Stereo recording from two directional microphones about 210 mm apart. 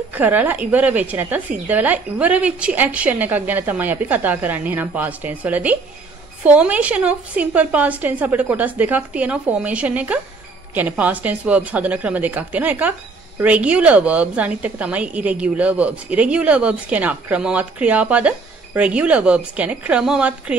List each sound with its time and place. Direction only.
0.1 s a woman's voice: 10° right (ahead or behind)